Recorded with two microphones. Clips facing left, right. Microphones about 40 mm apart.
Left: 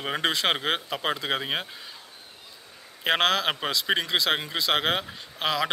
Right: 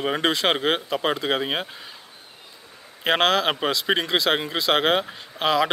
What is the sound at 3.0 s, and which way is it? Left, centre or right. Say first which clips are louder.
Speech: right 3 dB; centre.